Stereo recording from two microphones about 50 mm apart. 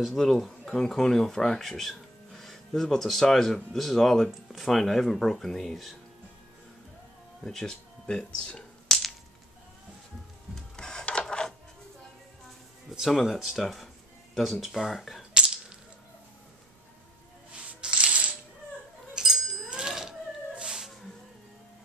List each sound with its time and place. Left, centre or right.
0.0 s speech: centre
7.4 s speech: centre
8.1 s speech: centre
8.8 s whip: centre
10.5 s printer: centre
11.1 s a sound: centre
13.0 s speech: centre
15.3 s whip: centre
17.7 s coin: centre
19.1 s a sound: centre
19.7 s mechanisms: centre